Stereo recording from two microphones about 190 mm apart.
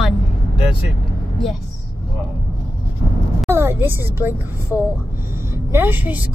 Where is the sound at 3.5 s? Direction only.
15° right (ahead or behind).